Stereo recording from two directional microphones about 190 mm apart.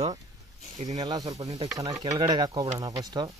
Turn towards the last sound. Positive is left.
turn(degrees=-20)  # may be behind; listen again after turning